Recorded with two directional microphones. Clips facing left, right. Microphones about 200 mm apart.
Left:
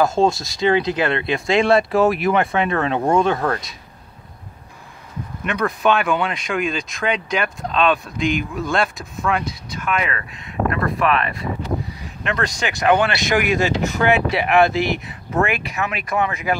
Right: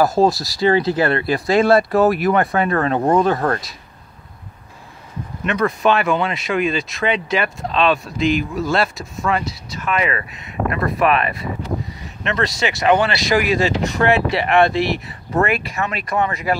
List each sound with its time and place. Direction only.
0.0 s speech: 5° right (ahead or behind)
0.5 s speech: 20° left (ahead or behind)
1.4 s speech: centre (ahead or behind)
5.4 s speech: centre (ahead or behind)
12.2 s speech: centre (ahead or behind)